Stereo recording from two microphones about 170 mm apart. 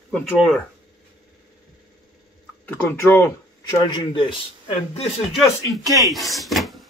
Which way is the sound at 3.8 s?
30° left (ahead or behind).